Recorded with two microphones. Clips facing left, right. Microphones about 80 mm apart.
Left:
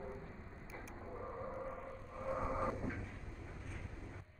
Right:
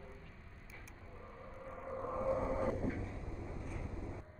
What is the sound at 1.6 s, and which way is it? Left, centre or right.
Vehicle, centre.